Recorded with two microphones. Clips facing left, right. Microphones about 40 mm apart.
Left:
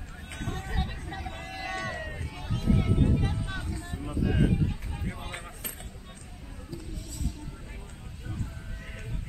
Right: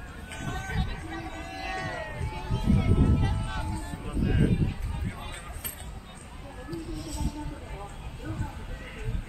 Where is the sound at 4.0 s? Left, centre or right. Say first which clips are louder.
Left 1 dB; centre.